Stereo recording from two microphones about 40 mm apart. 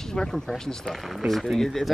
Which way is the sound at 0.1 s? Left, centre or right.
Centre.